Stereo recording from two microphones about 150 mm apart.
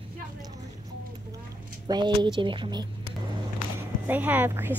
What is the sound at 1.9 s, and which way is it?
Speech, 30° right (ahead or behind).